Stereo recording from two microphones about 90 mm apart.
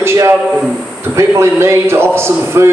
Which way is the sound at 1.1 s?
30° right (ahead or behind).